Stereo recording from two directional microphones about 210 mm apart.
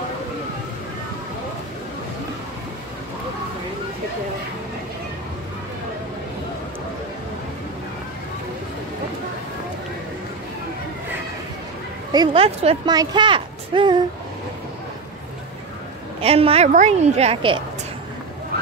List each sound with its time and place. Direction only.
12.1 s a woman's voice: 25° right (ahead or behind)
16.2 s a woman's voice: 30° right (ahead or behind)